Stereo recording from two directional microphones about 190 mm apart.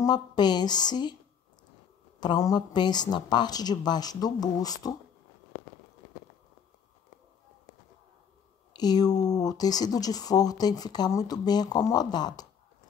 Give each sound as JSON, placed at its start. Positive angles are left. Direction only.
{"t": 0.0, "sound": "speech", "side_deg": 20}
{"t": 2.1, "sound": "speech", "side_deg": 20}
{"t": 8.7, "sound": "speech", "side_deg": 20}